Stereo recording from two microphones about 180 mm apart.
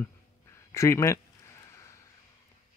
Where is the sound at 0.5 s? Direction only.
15° left (ahead or behind).